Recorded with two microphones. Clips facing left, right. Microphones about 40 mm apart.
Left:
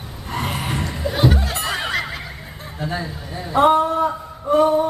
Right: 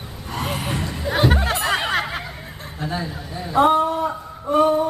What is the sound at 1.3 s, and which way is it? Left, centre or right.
Music, right.